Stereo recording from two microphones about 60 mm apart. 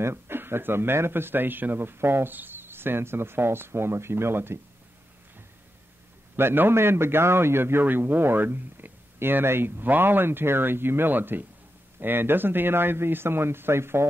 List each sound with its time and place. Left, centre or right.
0.0 s a man's voice: right
6.3 s a man's voice: right